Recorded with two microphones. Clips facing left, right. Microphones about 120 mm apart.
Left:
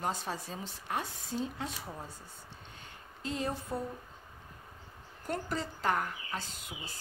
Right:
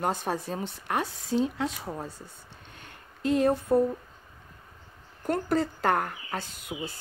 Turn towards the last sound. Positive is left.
turn(degrees=-55)  # may be behind; listen again after turning